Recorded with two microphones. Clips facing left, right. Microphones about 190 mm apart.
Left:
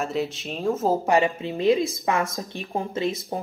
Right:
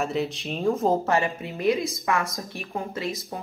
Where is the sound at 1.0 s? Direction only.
15° left (ahead or behind).